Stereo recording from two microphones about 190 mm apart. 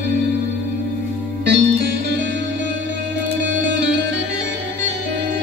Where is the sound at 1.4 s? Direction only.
65° right (ahead or behind).